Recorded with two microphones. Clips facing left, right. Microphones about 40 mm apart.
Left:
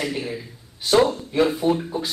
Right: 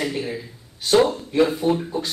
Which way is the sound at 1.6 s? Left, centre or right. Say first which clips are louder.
Even; centre.